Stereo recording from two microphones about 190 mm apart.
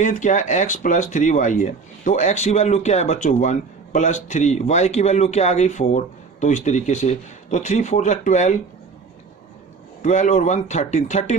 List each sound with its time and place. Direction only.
0.0 s speech: 40° left (ahead or behind)
10.0 s speech: 40° left (ahead or behind)